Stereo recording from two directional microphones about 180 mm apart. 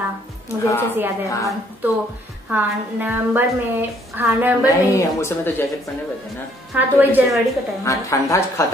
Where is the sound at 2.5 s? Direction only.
10° right (ahead or behind).